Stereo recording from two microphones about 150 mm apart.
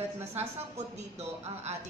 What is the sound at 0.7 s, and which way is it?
Speech, 45° right (ahead or behind).